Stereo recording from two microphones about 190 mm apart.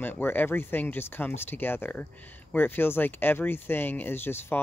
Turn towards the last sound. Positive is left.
turn(degrees=10)  # may be behind; listen again after turning